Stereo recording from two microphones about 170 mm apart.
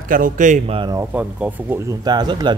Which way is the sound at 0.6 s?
30° right (ahead or behind).